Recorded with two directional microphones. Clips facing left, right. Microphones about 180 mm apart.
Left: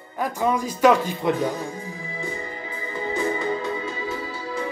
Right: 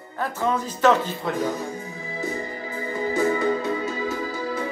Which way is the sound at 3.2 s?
45° right (ahead or behind).